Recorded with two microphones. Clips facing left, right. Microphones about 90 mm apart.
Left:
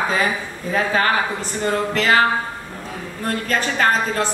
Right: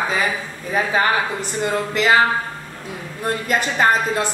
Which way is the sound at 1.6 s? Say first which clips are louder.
Even; 15° right (ahead or behind).